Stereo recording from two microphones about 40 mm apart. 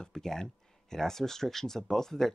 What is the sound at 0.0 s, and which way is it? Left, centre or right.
Speech, centre.